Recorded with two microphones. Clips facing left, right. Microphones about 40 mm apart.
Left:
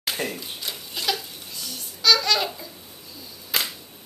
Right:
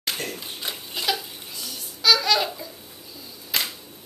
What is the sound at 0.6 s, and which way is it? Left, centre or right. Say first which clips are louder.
Babbling: right 1 dB; centre.